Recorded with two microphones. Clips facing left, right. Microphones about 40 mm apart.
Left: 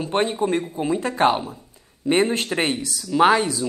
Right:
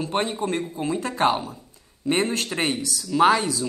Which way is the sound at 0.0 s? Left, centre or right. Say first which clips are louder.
Left 3 dB; centre.